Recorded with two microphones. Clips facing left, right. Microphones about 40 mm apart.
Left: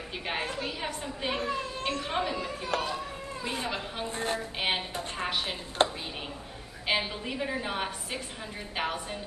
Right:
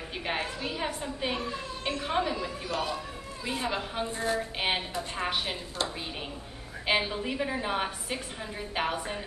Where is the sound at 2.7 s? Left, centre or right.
Left.